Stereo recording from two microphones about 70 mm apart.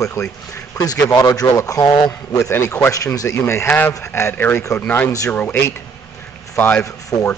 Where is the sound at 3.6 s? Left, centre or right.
Left.